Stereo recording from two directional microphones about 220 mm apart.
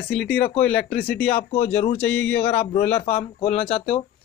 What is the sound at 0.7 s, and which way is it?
Speech, 45° left (ahead or behind).